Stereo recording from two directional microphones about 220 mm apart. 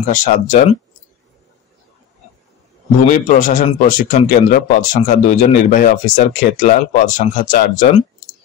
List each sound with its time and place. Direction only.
0.1 s speech: 35° left (ahead or behind)
3.1 s speech: 35° left (ahead or behind)